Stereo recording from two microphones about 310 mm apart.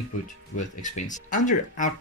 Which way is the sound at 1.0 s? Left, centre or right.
Left.